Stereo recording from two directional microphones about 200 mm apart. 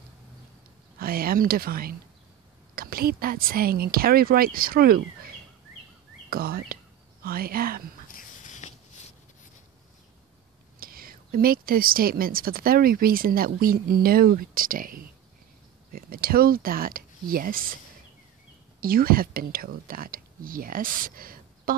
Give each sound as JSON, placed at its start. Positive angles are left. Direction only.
{"t": 0.9, "sound": "a woman's voice", "side_deg": -45}
{"t": 6.3, "sound": "a woman's voice", "side_deg": -50}
{"t": 8.1, "sound": "a sound", "side_deg": 40}
{"t": 10.8, "sound": "a woman's voice", "side_deg": -45}
{"t": 18.8, "sound": "speech", "side_deg": -45}